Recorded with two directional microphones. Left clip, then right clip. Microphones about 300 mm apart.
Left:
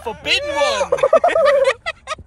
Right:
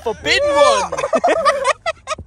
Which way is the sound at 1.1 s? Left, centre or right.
Centre.